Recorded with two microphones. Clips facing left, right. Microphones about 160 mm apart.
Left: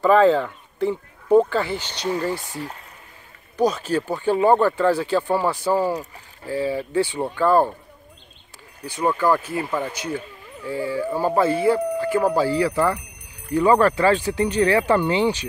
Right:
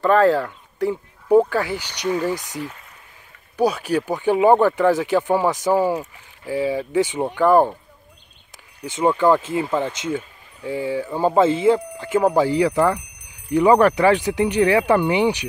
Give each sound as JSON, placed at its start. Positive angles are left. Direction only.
{"t": 0.0, "sound": "speech", "side_deg": 0}
{"t": 8.8, "sound": "speech", "side_deg": -20}